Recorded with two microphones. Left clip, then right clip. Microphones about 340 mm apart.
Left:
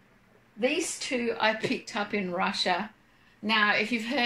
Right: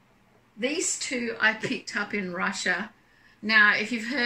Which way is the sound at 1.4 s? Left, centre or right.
Centre.